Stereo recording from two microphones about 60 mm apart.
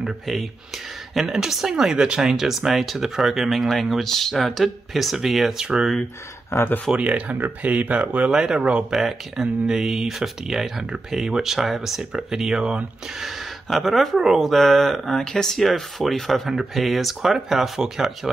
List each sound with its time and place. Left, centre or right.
0.0 s speech: centre
6.5 s speech: left
7.0 s speech: right
8.3 s speech: centre
13.7 s speech: centre